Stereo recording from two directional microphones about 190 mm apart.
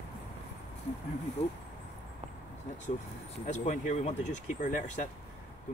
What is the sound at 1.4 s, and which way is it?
Speech, 35° left (ahead or behind).